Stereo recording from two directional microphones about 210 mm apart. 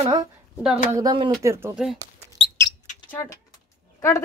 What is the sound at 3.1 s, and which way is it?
Speech, 10° left (ahead or behind).